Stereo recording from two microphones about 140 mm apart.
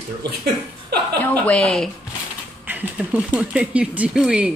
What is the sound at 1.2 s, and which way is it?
Speech, 10° left (ahead or behind).